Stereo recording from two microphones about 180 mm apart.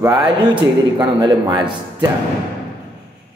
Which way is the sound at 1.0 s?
20° right (ahead or behind).